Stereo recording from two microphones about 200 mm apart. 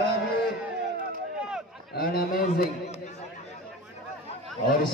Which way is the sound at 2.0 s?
50° left (ahead or behind).